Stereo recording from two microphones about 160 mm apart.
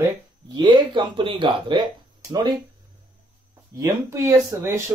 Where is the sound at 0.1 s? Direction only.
25° right (ahead or behind).